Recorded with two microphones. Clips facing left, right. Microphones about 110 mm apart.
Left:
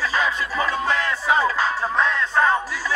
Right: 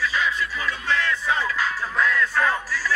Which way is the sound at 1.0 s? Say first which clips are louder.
Left 4 dB; 25° left (ahead or behind).